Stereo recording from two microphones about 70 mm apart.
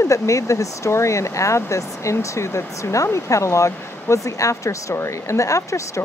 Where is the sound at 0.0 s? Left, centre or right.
Left.